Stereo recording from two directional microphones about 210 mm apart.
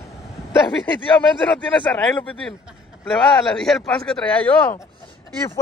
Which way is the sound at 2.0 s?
5° left (ahead or behind).